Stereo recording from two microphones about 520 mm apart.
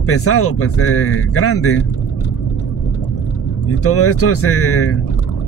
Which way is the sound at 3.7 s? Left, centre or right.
Left.